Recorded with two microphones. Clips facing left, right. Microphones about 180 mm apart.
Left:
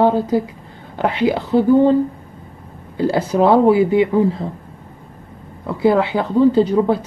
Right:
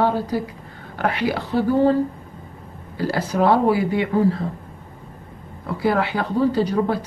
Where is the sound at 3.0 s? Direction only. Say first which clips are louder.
Left 5 dB; 25° left (ahead or behind).